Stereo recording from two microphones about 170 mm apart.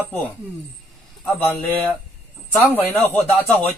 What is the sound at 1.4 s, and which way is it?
Speech, 10° left (ahead or behind).